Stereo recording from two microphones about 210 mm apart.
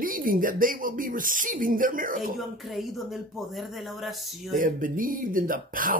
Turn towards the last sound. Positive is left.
turn(degrees=-40)  # may be behind; listen again after turning